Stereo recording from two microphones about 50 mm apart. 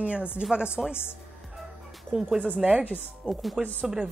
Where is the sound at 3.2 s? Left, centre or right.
Centre.